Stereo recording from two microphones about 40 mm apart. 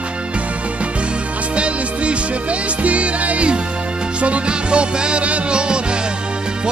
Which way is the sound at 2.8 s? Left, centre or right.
Right.